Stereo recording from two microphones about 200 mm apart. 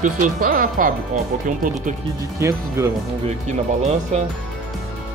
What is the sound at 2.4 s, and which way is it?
Speech, 15° right (ahead or behind).